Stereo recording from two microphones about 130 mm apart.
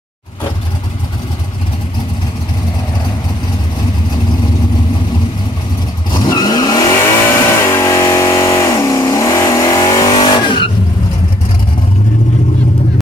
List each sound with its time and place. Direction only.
6.1 s vehicle: 30° left (ahead or behind)
10.1 s vehicle: 40° left (ahead or behind)